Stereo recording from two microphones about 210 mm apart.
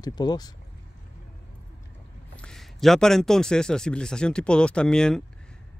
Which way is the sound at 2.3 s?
5° left (ahead or behind).